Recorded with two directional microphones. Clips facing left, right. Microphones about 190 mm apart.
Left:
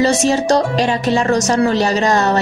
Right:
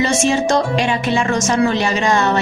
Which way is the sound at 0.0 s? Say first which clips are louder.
Left 2 dB; 35° left (ahead or behind).